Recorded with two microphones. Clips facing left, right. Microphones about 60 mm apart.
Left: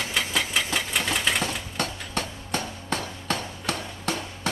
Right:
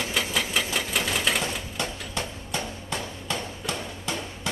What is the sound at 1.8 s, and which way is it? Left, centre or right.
Hammer, left.